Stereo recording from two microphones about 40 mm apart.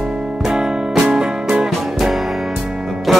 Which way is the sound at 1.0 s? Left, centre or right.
Centre.